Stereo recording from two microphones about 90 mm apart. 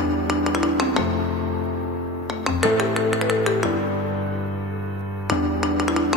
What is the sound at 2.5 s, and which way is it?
Music, centre (ahead or behind).